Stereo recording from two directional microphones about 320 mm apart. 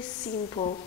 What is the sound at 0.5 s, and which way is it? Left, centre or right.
Speech, centre.